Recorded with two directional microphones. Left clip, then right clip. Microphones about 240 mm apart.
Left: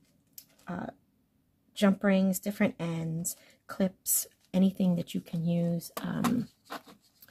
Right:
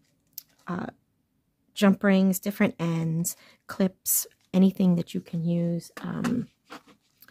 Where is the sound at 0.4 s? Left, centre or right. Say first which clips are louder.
Right 5 dB; right.